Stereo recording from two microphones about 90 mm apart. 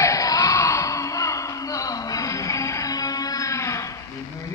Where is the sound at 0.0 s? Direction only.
40° left (ahead or behind).